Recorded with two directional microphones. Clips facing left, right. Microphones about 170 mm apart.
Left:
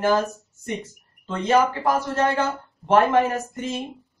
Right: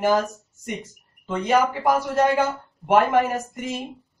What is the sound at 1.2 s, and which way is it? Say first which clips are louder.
A man's voice: left 1 dB; 10° right (ahead or behind).